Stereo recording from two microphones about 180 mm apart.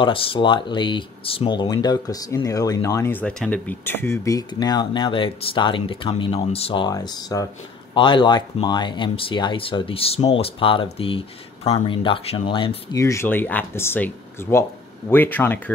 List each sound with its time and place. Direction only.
0.0 s speech: 30° left (ahead or behind)
13.0 s speech: 15° left (ahead or behind)